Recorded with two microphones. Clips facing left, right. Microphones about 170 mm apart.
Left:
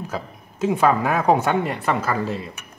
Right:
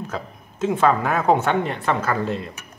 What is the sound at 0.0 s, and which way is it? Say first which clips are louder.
Speech: even; 10° left (ahead or behind).